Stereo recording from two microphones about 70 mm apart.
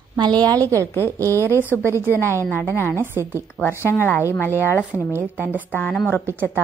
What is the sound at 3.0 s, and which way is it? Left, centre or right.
Speech, right.